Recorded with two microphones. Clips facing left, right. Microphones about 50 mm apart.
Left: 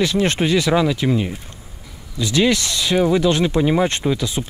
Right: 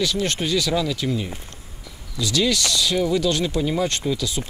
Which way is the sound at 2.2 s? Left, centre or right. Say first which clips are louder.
Left 4 dB; left.